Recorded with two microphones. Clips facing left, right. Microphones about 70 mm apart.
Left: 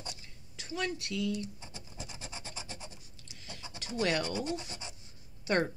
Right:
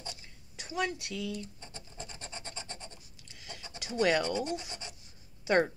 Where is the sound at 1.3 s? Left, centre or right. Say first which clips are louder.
Left 3 dB; centre.